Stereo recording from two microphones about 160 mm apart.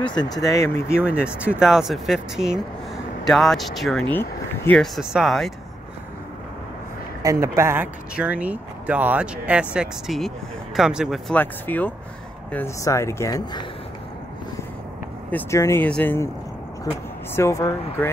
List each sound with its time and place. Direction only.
0.0 s speech: 25° left (ahead or behind)
1.0 s speech: 5° right (ahead or behind)
4.1 s speech: 10° left (ahead or behind)
4.9 s speech: centre (ahead or behind)
7.2 s speech: 15° right (ahead or behind)
11.3 s speech: 10° left (ahead or behind)
15.3 s speech: 15° left (ahead or behind)
17.4 s speech: 20° left (ahead or behind)